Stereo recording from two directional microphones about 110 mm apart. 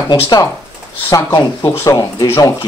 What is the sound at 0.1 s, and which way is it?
Speech, 35° left (ahead or behind).